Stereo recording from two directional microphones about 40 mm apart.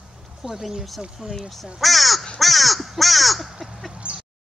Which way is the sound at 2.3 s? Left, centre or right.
Centre.